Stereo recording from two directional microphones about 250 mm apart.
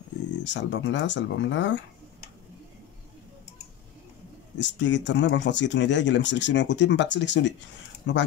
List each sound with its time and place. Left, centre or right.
0.4 s speech: left
4.6 s speech: left